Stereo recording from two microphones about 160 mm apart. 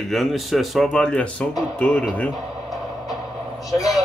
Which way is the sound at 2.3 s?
Centre (ahead or behind).